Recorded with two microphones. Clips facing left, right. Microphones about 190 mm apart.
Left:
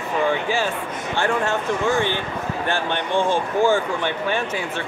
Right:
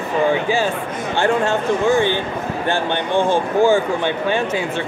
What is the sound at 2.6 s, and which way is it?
Speech, 20° right (ahead or behind).